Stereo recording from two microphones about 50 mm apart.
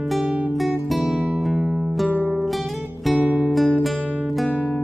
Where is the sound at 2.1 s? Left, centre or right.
Right.